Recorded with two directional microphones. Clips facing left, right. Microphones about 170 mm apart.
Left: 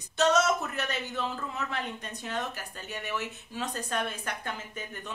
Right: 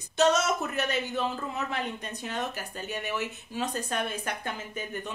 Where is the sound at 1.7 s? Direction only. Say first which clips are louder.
Right 2 dB; 15° right (ahead or behind).